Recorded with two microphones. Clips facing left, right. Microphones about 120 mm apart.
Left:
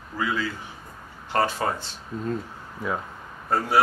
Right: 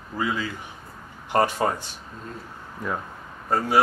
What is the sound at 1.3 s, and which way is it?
Speech, 15° right (ahead or behind).